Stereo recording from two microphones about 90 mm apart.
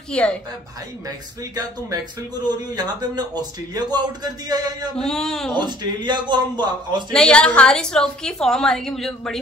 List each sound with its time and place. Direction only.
0.1 s a woman's voice: 10° left (ahead or behind)
1.0 s speech: 45° right (ahead or behind)
4.9 s a woman's voice: 5° left (ahead or behind)
5.5 s a man's voice: 55° right (ahead or behind)
7.1 s a woman's voice: 10° left (ahead or behind)